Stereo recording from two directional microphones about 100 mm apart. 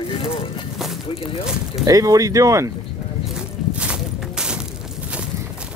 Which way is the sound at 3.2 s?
10° right (ahead or behind).